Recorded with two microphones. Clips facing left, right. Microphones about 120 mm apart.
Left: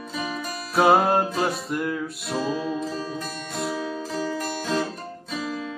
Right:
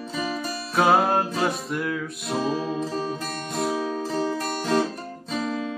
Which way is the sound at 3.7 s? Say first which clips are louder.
Right 3 dB; 45° right (ahead or behind).